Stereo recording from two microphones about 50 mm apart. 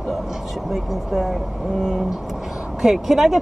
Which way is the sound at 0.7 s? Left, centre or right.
Centre.